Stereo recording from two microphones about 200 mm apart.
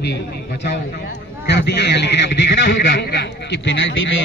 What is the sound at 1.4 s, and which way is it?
A man's voice, 55° left (ahead or behind).